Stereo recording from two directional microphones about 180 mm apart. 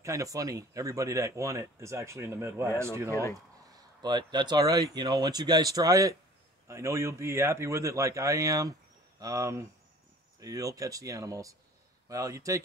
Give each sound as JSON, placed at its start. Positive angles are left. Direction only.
{"t": 0.0, "sound": "speech", "side_deg": -20}
{"t": 3.1, "sound": "speech", "side_deg": 15}
{"t": 4.0, "sound": "speech", "side_deg": -25}